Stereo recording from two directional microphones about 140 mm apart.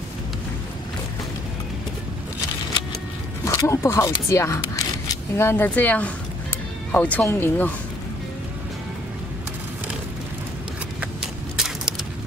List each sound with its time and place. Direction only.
3.4 s speech: 20° left (ahead or behind)
11.0 s clip-clop: 5° right (ahead or behind)